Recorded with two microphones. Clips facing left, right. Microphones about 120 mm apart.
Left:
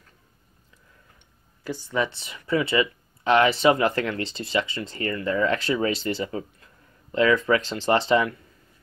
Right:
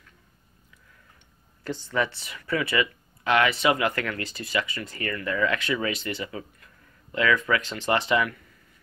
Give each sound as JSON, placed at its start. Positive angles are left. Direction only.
{"t": 1.6, "sound": "speech", "side_deg": 10}